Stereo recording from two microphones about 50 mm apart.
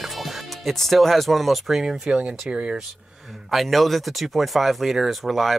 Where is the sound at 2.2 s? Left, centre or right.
Right.